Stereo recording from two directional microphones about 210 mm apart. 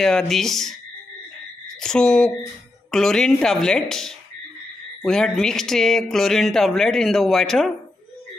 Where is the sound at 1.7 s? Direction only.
5° left (ahead or behind).